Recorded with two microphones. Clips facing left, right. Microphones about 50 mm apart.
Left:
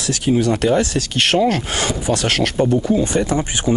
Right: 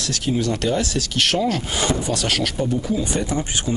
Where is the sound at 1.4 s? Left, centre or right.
Left.